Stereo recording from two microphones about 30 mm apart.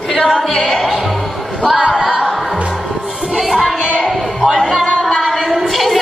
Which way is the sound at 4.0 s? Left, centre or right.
Centre.